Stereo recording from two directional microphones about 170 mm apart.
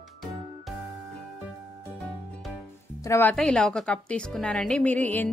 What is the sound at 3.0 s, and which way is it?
A woman's voice, 10° left (ahead or behind).